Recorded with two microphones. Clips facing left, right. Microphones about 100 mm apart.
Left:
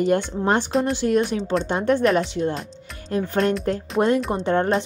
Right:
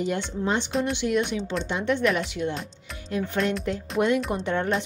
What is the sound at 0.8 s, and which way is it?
Speech, 40° left (ahead or behind).